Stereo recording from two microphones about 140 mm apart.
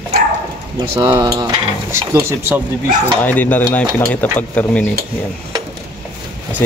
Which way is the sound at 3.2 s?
10° left (ahead or behind).